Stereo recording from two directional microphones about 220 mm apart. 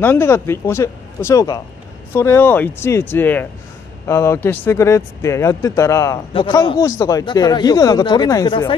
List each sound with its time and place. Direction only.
0.0 s speech: 10° left (ahead or behind)